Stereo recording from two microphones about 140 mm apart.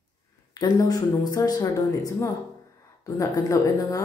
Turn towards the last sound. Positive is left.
turn(degrees=25)  # may be behind; listen again after turning